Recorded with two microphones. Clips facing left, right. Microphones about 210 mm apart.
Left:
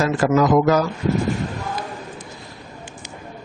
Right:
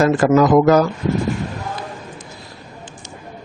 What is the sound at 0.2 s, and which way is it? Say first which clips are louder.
Speech: right 1 dB; 50° right (ahead or behind).